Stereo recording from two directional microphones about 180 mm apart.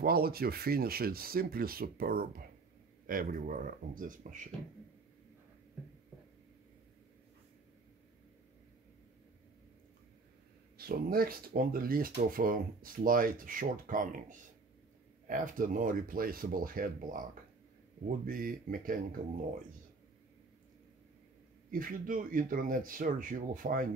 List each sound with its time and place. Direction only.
0.0 s speech: 55° right (ahead or behind)
10.8 s speech: 55° right (ahead or behind)
21.6 s speech: 50° right (ahead or behind)